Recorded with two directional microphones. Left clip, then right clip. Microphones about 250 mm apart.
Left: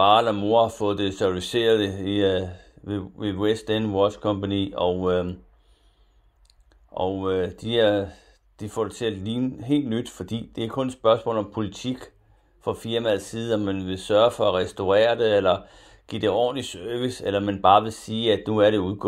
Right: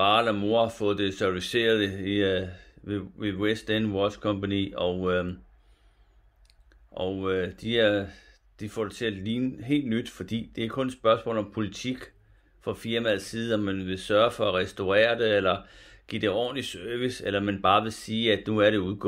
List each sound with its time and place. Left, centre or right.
0.0 s speech: centre
6.9 s speech: centre